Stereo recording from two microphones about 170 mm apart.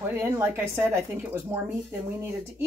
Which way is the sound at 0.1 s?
10° right (ahead or behind).